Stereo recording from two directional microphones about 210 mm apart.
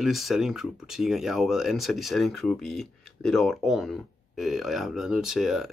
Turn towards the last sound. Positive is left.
turn(degrees=0)  # may be behind; listen again after turning